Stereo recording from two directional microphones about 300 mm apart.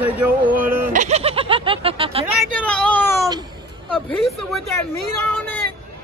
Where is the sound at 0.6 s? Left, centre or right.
Centre.